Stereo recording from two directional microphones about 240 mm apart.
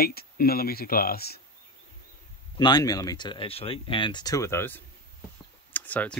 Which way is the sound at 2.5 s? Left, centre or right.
Centre.